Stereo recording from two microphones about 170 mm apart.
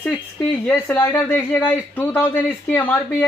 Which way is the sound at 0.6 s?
10° left (ahead or behind).